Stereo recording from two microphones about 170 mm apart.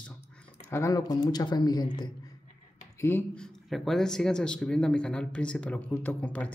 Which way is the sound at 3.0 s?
15° left (ahead or behind).